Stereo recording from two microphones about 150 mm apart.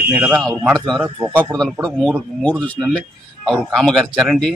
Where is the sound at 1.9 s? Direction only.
15° right (ahead or behind).